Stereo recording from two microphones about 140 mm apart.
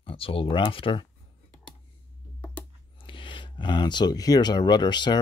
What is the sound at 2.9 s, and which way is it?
Speech, 35° left (ahead or behind).